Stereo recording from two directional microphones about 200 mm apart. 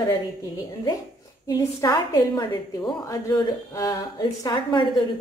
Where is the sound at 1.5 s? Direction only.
20° left (ahead or behind).